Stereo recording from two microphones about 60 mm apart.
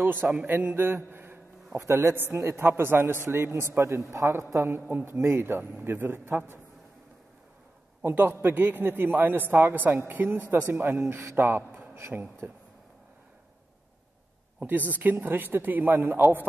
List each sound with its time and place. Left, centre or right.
0.0 s a man's voice: right
1.8 s a man's voice: right
2.1 s a man's voice: right
2.4 s a man's voice: right
2.7 s a man's voice: right
3.6 s a man's voice: right
8.0 s a man's voice: right
11.3 s a man's voice: right
14.6 s a man's voice: right